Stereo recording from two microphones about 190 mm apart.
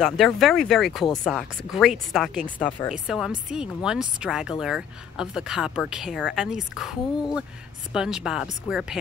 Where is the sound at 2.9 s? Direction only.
5° right (ahead or behind).